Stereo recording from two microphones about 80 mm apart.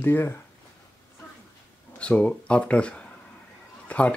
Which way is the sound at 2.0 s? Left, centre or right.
Centre.